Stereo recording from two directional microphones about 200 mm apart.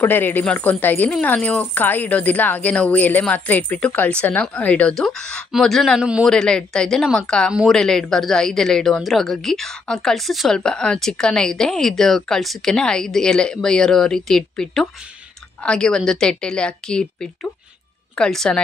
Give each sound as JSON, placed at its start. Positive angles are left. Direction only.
{"t": 0.0, "sound": "a woman's voice", "side_deg": 10}